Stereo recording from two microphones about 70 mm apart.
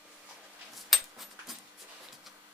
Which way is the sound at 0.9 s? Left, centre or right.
Centre.